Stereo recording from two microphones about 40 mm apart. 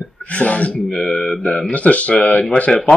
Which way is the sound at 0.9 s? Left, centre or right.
Centre.